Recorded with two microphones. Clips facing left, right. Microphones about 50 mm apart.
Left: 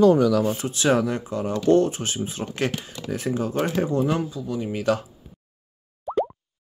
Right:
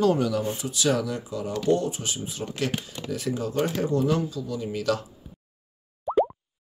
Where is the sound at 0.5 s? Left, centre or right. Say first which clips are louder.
Left 4 dB; left.